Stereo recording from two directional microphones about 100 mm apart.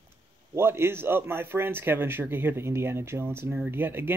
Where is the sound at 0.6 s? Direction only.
25° right (ahead or behind).